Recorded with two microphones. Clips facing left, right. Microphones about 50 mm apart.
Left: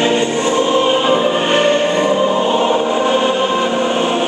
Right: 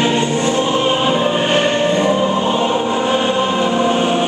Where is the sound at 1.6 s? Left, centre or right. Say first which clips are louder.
Left 2 dB; centre.